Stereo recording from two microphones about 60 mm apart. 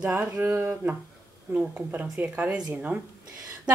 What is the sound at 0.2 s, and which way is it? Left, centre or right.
Speech, right.